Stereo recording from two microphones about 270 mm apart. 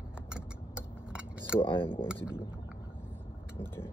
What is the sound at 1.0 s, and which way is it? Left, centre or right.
Keys jangling, centre.